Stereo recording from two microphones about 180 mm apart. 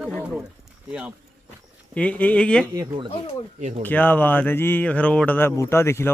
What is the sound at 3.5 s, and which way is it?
Speech, 40° right (ahead or behind).